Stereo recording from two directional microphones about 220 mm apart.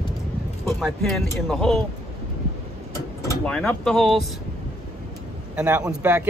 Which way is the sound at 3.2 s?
5° left (ahead or behind).